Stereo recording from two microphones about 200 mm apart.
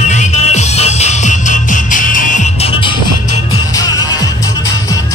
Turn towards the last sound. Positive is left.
turn(degrees=20)  # may be behind; listen again after turning